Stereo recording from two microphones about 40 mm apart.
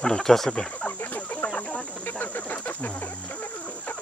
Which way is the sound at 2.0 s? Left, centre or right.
Left.